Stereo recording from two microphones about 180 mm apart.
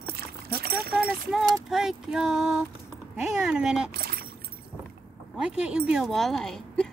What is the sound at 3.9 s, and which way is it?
Speech, 60° right (ahead or behind).